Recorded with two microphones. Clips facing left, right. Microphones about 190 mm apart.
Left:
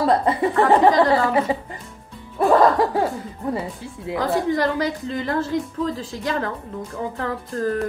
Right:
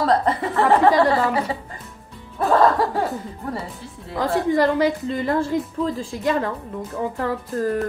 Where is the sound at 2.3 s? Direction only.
15° left (ahead or behind).